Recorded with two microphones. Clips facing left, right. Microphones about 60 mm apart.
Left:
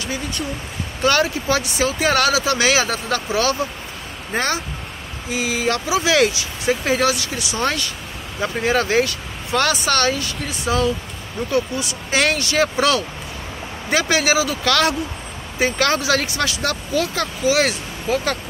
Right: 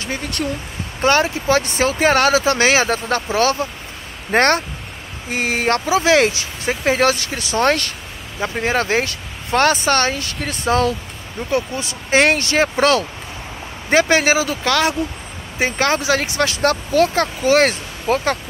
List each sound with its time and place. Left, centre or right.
1.0 s speech: right
4.3 s speech: right
5.9 s speech: right
7.0 s speech: right
8.4 s speech: right
10.4 s speech: right